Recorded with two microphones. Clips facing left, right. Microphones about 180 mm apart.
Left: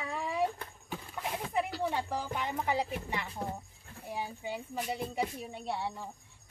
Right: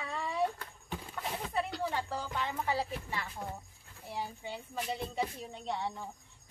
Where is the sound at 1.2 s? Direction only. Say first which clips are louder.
Left 2 dB; 15° left (ahead or behind).